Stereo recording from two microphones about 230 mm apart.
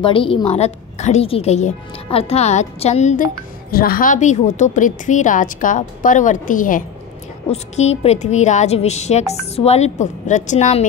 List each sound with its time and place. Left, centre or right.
0.0 s a woman's voice: left